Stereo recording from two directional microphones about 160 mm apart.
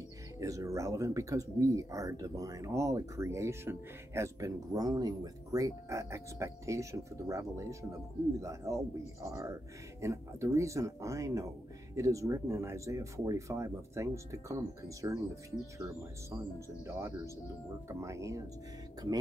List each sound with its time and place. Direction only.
0.4 s speech: 20° right (ahead or behind)
16.8 s speech: 15° right (ahead or behind)